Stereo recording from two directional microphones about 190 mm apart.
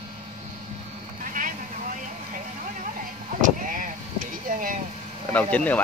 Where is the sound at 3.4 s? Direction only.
45° right (ahead or behind).